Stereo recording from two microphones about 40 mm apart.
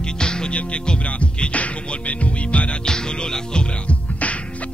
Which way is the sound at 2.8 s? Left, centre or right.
Centre.